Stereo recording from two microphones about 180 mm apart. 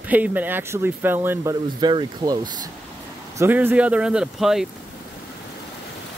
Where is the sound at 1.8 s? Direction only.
25° right (ahead or behind).